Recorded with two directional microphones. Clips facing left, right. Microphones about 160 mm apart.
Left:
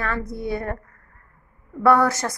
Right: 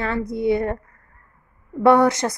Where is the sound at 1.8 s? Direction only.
20° right (ahead or behind).